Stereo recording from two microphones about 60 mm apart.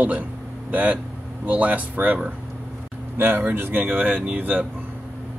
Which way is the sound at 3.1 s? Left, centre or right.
Right.